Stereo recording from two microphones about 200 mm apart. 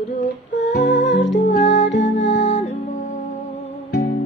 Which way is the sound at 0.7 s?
55° left (ahead or behind).